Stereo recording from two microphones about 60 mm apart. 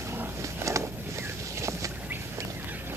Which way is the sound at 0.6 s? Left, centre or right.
Right.